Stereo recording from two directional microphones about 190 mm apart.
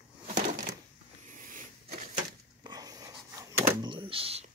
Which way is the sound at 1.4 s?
45° right (ahead or behind).